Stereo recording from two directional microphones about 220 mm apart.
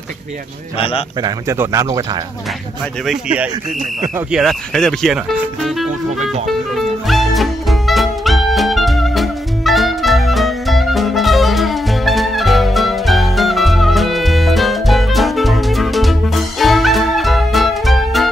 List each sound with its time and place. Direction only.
0.7 s a man's voice: 25° left (ahead or behind)
1.2 s speech: 15° right (ahead or behind)
3.1 s speech: 5° right (ahead or behind)
5.9 s speech: 35° right (ahead or behind)
6.4 s music: centre (ahead or behind)